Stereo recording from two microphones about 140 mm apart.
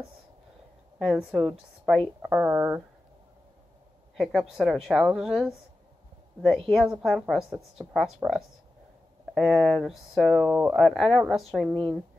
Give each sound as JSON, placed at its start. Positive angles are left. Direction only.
{"t": 0.9, "sound": "speech", "side_deg": -5}
{"t": 4.2, "sound": "speech", "side_deg": 0}
{"t": 9.3, "sound": "speech", "side_deg": 0}